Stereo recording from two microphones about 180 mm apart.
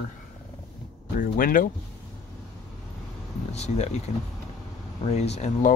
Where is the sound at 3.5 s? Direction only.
40° left (ahead or behind).